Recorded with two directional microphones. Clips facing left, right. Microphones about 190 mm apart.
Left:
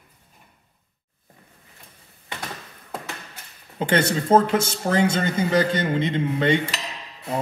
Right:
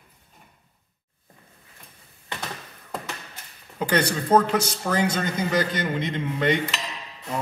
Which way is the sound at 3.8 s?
25° left (ahead or behind).